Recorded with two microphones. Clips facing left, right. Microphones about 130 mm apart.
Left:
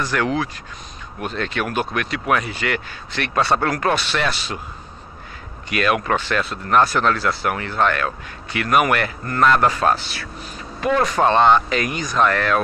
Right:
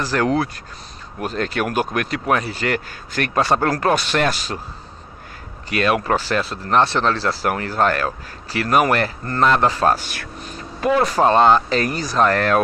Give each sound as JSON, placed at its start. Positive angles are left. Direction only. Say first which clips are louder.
{"t": 0.0, "sound": "speech", "louder": "right 2 dB", "side_deg": -35}
{"t": 5.7, "sound": "speech", "louder": "right 1 dB", "side_deg": -35}
{"t": 9.9, "sound": "speech", "louder": "even", "side_deg": -50}
{"t": 11.1, "sound": "speech", "louder": "right 1 dB", "side_deg": -35}